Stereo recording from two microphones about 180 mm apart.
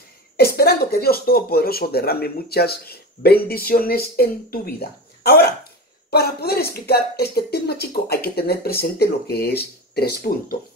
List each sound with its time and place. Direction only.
0.6 s speech: 60° left (ahead or behind)